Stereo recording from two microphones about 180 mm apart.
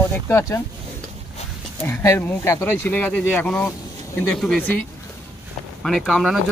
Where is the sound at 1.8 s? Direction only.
15° left (ahead or behind).